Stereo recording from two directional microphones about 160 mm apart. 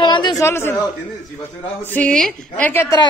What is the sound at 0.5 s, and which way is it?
Speech, 15° left (ahead or behind).